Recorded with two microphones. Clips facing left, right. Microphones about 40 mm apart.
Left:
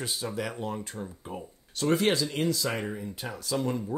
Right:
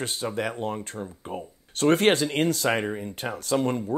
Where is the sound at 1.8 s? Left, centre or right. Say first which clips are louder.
Right 5 dB; right.